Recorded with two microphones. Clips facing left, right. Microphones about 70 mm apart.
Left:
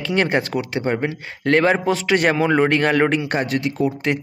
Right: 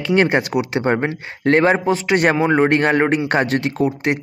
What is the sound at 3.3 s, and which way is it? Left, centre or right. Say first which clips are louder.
Speech: right 3 dB; right.